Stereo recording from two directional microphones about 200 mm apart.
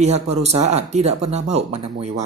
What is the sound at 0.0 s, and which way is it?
Speech, 35° right (ahead or behind).